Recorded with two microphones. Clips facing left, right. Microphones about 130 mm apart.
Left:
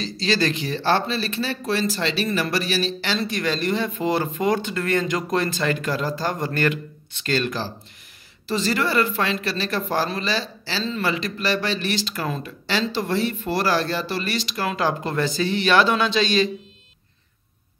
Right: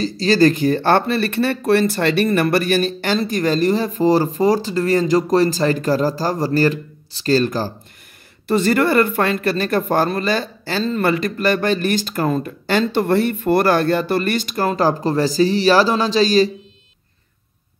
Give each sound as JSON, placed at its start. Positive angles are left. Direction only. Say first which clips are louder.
{"t": 0.0, "sound": "speech", "louder": "right 8 dB", "side_deg": -45}
{"t": 8.5, "sound": "speech", "louder": "right 7 dB", "side_deg": -55}